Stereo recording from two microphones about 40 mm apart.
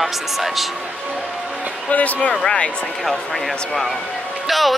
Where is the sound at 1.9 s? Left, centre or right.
Left.